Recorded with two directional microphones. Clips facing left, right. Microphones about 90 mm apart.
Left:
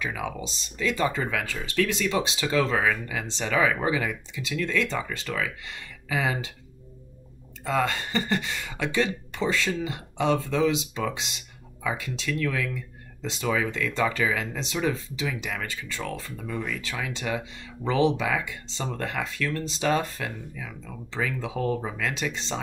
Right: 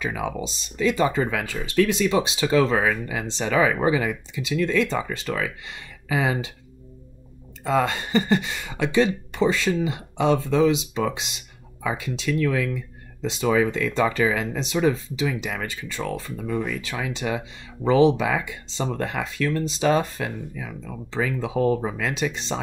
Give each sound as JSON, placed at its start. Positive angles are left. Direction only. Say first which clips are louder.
{"t": 0.0, "sound": "speech", "louder": "right 4 dB", "side_deg": -20}
{"t": 7.6, "sound": "speech", "louder": "right 4 dB", "side_deg": -20}